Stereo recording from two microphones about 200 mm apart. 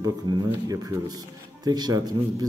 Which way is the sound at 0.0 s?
20° right (ahead or behind).